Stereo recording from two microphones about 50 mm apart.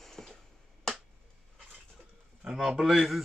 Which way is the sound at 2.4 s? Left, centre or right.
Centre.